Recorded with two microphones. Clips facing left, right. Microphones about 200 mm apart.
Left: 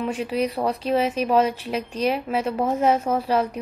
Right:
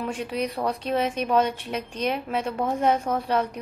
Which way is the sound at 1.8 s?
30° left (ahead or behind).